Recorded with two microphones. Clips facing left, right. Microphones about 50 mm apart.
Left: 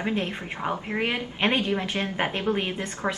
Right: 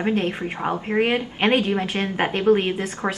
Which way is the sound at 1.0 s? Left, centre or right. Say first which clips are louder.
Right 5 dB; right.